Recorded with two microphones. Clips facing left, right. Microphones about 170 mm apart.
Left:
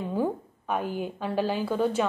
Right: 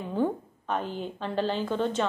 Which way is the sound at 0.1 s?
10° left (ahead or behind).